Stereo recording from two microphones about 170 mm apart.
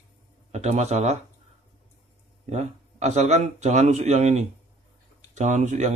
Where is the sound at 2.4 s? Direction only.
40° right (ahead or behind).